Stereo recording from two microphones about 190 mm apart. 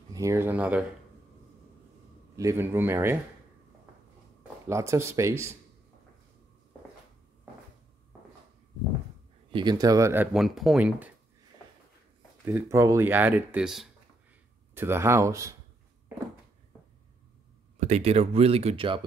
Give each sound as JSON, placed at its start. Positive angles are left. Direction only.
{"t": 0.1, "sound": "speech", "side_deg": -15}
{"t": 2.3, "sound": "speech", "side_deg": -15}
{"t": 4.6, "sound": "speech", "side_deg": -15}
{"t": 9.5, "sound": "speech", "side_deg": -25}
{"t": 12.4, "sound": "speech", "side_deg": -15}
{"t": 17.7, "sound": "speech", "side_deg": -35}